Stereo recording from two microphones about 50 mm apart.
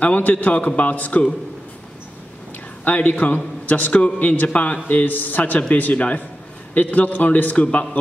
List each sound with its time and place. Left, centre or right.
0.0 s a man's voice: left
2.8 s a man's voice: left